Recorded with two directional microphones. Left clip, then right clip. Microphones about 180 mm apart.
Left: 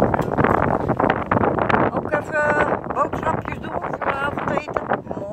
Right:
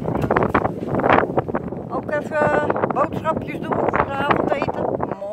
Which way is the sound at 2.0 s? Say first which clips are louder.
Even; 15° right (ahead or behind).